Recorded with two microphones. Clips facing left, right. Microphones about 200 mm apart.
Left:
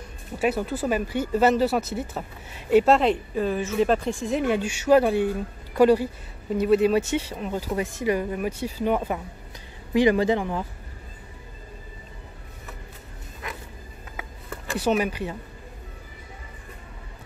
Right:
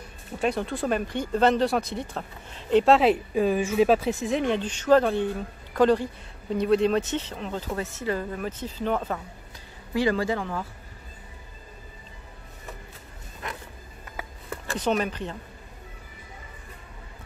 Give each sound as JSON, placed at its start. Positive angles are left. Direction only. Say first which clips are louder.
{"t": 0.4, "sound": "speech", "louder": "left 2 dB", "side_deg": 5}
{"t": 14.7, "sound": "speech", "louder": "left 2 dB", "side_deg": 10}